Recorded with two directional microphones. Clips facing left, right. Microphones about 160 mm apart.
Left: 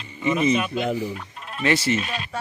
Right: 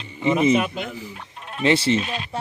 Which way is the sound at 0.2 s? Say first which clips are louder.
Right 3 dB; 25° right (ahead or behind).